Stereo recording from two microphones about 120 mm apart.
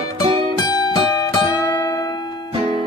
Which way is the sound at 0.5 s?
35° left (ahead or behind).